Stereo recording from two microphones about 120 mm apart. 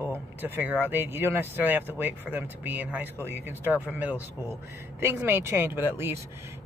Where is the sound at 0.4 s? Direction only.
15° right (ahead or behind).